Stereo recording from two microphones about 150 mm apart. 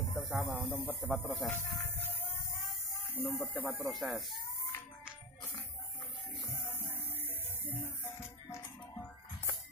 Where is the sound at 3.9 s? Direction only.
Centre (ahead or behind).